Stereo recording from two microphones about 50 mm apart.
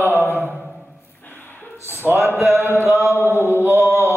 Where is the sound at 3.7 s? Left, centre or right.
Right.